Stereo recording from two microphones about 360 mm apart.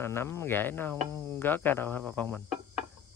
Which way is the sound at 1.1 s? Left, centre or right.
Centre.